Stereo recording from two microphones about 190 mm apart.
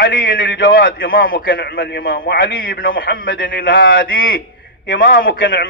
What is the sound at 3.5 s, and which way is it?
Speech, 50° left (ahead or behind).